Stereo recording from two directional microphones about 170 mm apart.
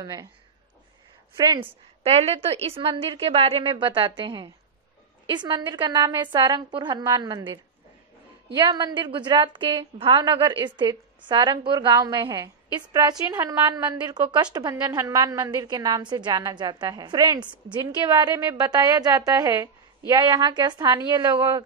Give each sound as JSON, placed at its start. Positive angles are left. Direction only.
{"t": 0.0, "sound": "a woman's voice", "side_deg": -25}
{"t": 1.3, "sound": "a woman's voice", "side_deg": -30}